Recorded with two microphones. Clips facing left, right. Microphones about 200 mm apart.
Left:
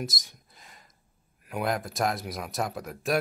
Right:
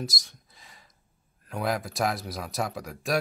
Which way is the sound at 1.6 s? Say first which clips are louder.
Even; centre (ahead or behind).